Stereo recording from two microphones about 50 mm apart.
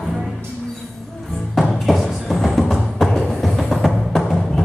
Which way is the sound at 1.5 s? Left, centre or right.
Centre.